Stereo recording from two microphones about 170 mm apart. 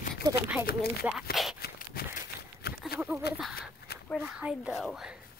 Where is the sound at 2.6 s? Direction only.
65° left (ahead or behind).